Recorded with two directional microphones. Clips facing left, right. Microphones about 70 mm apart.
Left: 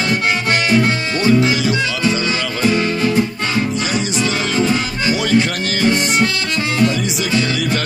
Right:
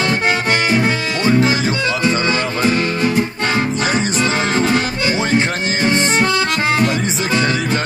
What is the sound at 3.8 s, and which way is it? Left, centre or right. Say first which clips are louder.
Music: right 2 dB; right.